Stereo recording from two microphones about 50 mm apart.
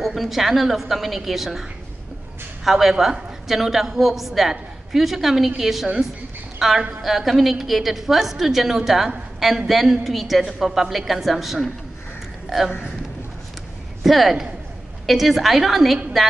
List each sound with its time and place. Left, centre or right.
0.0 s a woman's voice: centre
14.0 s a woman's voice: centre